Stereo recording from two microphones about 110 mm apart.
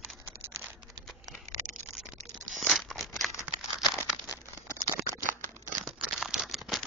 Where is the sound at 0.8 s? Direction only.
Centre (ahead or behind).